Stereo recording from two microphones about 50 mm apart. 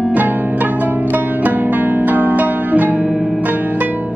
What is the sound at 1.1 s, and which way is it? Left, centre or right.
Music, right.